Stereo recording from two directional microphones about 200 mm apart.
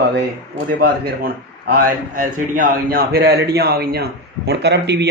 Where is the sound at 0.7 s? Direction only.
50° right (ahead or behind).